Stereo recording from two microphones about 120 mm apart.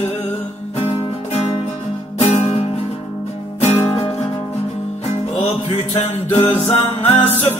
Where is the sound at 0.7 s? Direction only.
60° left (ahead or behind).